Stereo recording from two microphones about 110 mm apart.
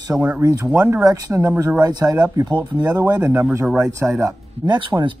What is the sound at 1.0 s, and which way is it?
Speech, 35° right (ahead or behind).